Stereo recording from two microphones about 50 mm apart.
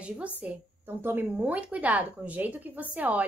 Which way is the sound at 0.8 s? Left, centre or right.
Right.